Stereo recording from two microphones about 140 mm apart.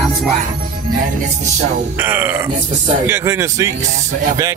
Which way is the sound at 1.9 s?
15° right (ahead or behind).